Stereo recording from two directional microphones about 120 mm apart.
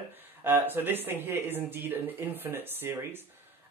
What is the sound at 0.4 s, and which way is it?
A man's voice, 20° right (ahead or behind).